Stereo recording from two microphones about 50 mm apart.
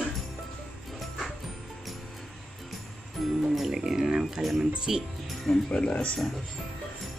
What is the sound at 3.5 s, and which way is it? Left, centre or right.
Speech, centre.